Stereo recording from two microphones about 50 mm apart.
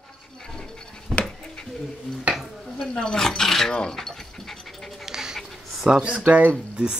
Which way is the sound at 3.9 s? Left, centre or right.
Centre.